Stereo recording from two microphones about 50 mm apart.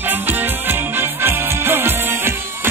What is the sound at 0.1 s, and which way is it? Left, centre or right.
Music, right.